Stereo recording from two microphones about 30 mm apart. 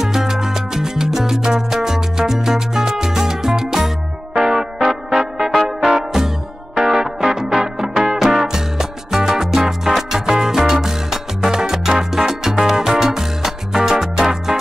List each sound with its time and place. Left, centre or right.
0.0 s music: centre